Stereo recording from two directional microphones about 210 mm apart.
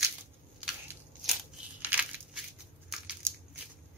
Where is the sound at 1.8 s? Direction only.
5° right (ahead or behind).